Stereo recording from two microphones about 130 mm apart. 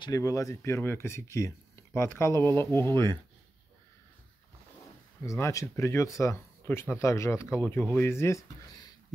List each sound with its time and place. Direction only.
0.0 s speech: 25° left (ahead or behind)
5.2 s speech: 25° left (ahead or behind)